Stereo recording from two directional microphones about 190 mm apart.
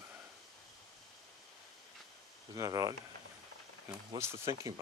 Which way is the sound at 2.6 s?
20° right (ahead or behind).